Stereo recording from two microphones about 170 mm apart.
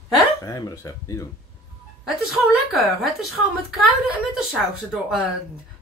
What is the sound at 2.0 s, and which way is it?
A woman's voice, centre (ahead or behind).